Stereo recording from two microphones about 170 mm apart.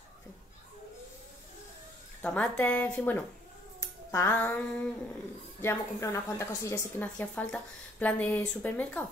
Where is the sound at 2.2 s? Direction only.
5° left (ahead or behind).